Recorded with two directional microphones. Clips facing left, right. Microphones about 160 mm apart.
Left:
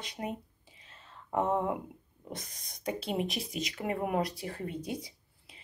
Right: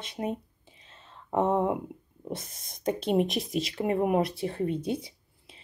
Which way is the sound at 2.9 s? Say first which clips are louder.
Right 7 dB; 45° right (ahead or behind).